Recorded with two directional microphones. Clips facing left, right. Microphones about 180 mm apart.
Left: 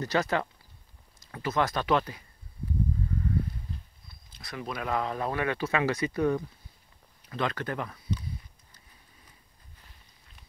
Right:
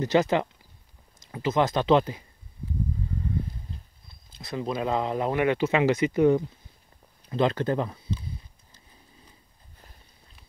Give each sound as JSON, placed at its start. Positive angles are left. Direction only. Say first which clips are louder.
{"t": 0.0, "sound": "speech", "louder": "right 5 dB", "side_deg": -20}
{"t": 4.1, "sound": "speech", "louder": "right 7 dB", "side_deg": -25}